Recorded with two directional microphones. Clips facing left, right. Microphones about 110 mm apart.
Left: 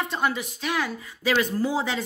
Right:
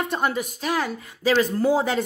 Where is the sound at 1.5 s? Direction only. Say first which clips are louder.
Right 5 dB; 50° right (ahead or behind).